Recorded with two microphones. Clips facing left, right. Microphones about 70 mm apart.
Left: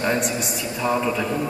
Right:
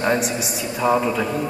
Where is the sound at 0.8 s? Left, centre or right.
Centre.